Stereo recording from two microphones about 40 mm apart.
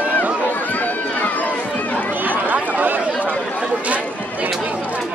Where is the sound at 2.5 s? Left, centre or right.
Right.